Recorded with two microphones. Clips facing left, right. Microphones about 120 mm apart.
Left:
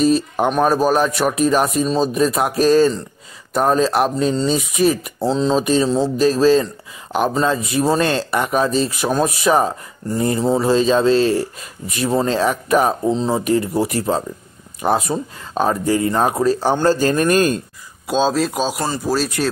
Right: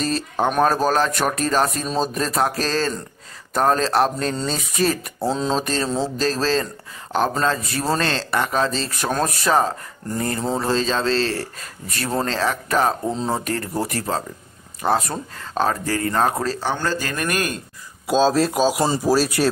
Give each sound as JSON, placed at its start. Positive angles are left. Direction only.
{"t": 0.0, "sound": "speech", "side_deg": 10}
{"t": 5.2, "sound": "speech", "side_deg": 0}
{"t": 5.6, "sound": "speech", "side_deg": 10}
{"t": 13.1, "sound": "speech", "side_deg": -5}
{"t": 13.4, "sound": "speech", "side_deg": 10}
{"t": 16.7, "sound": "a man's voice", "side_deg": 30}
{"t": 18.0, "sound": "speech", "side_deg": 0}